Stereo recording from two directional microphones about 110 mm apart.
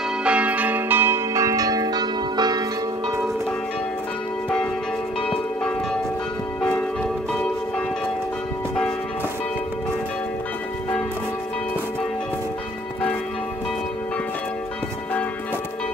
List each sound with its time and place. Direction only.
0.2 s change ringing: 10° right (ahead or behind); by 2.6 s 40° right (ahead or behind)
5.2 s church bell: 10° left (ahead or behind)